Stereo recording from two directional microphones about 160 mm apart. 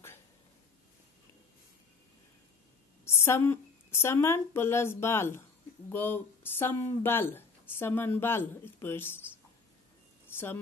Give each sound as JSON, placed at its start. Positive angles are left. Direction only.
{"t": 3.1, "sound": "speech", "side_deg": 15}
{"t": 10.3, "sound": "speech", "side_deg": 15}